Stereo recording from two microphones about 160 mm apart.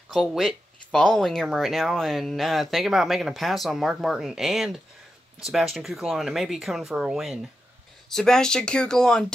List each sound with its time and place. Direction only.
0.1 s speech: centre (ahead or behind)